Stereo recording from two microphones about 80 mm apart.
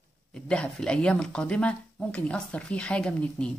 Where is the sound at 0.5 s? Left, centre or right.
Centre.